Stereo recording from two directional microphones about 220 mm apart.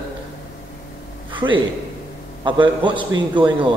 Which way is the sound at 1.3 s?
20° right (ahead or behind).